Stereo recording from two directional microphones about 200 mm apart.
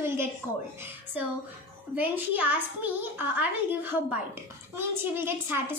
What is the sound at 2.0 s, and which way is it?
A child's voice, 10° right (ahead or behind).